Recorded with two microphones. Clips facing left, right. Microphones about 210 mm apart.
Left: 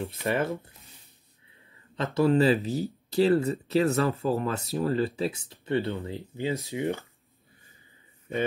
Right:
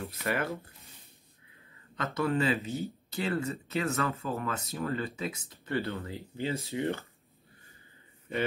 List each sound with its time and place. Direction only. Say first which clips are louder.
0.0 s speech: left 5 dB; 25° left (ahead or behind)
2.1 s speech: left 7 dB; 35° left (ahead or behind)
5.7 s speech: left 5 dB; 20° left (ahead or behind)